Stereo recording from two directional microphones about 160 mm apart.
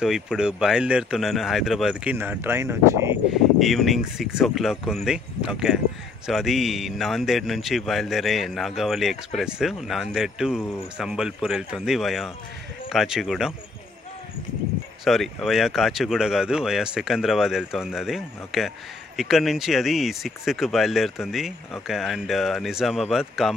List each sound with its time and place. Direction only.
0.0 s a man's voice: 5° right (ahead or behind)
3.3 s a man's voice: centre (ahead or behind)
15.0 s a man's voice: centre (ahead or behind)